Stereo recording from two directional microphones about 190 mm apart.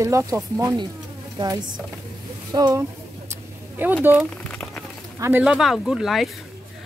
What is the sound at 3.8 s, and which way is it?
Speech, 10° right (ahead or behind).